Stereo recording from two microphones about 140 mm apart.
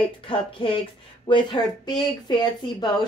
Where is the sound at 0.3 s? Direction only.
40° left (ahead or behind).